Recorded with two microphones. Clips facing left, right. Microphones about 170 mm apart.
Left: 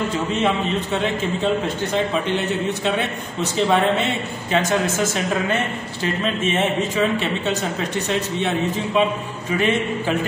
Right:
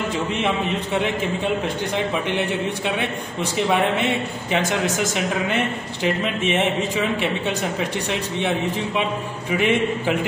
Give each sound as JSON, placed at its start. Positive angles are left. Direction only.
{"t": 3.7, "sound": "a man's voice", "side_deg": -15}
{"t": 8.1, "sound": "a man's voice", "side_deg": -15}
{"t": 9.6, "sound": "a man's voice", "side_deg": -15}